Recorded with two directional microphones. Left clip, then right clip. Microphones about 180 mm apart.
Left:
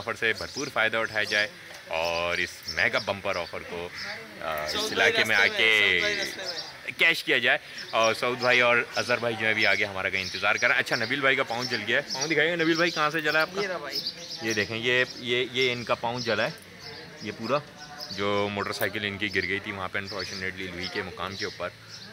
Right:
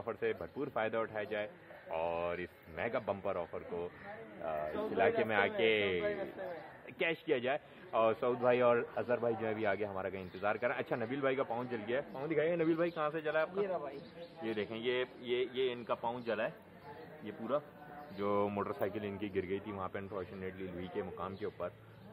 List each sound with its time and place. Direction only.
0.0 s speech: 10° left (ahead or behind)
13.7 s speech: 5° left (ahead or behind)
14.4 s speech: 30° left (ahead or behind)
18.1 s speech: 15° left (ahead or behind)
18.4 s speech: 5° left (ahead or behind)